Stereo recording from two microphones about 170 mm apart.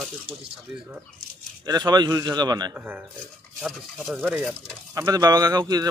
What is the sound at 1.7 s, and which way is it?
Speech, 25° right (ahead or behind).